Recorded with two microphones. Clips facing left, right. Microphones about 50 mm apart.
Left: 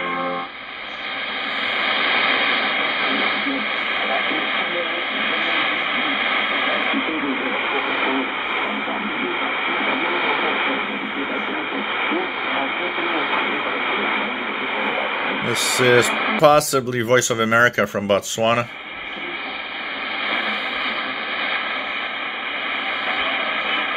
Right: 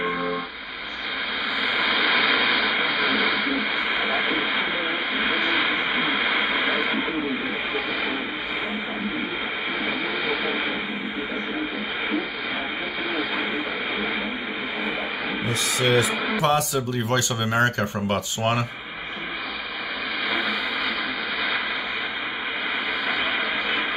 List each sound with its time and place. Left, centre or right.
1.8 s vehicle: left
2.6 s radio: left
9.8 s radio: left
13.1 s radio: left
15.4 s a sound: left
16.3 s speech: left